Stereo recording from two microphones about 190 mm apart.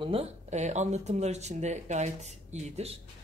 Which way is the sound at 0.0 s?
30° right (ahead or behind).